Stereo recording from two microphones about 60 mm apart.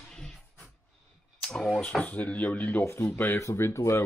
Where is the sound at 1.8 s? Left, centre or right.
Left.